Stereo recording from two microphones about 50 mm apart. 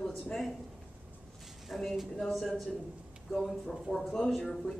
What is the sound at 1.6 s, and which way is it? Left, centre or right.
A man's voice, centre.